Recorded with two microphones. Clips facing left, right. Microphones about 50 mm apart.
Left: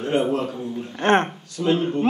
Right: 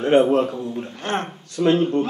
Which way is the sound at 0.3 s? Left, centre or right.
Right.